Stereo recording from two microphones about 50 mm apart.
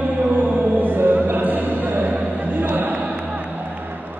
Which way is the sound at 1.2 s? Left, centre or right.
Right.